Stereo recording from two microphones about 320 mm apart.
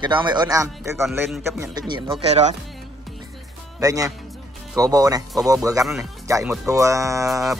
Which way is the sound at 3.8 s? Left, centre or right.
Centre.